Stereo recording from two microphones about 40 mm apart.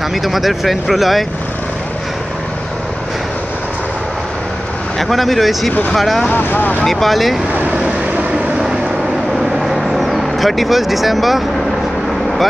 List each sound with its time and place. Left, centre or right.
0.1 s speech: centre
4.9 s speech: centre
6.3 s speech: left
6.8 s speech: centre
7.7 s vehicle: right
9.6 s vehicle: centre